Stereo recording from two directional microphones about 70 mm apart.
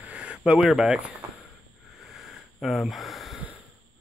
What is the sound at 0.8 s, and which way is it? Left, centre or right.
Speech, centre.